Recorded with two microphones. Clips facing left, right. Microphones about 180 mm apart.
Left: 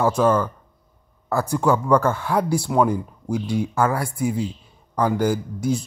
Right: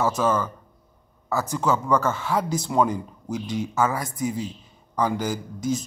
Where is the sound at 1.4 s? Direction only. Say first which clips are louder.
Left 5 dB; 15° left (ahead or behind).